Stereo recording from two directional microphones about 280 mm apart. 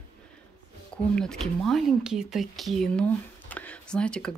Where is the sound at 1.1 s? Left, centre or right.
Centre.